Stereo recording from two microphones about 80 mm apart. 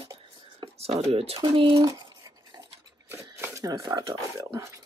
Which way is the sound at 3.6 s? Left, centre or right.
Right.